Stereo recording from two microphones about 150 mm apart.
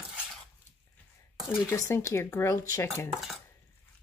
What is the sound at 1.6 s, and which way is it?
Speech, 15° left (ahead or behind).